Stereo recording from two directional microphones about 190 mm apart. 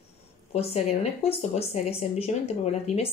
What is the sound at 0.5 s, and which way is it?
Speech, 35° left (ahead or behind).